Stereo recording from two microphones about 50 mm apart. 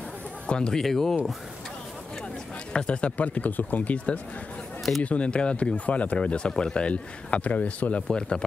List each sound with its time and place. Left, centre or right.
0.5 s speech: centre
2.7 s speech: centre